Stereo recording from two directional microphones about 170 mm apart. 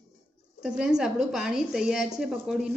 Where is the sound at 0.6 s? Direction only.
5° right (ahead or behind).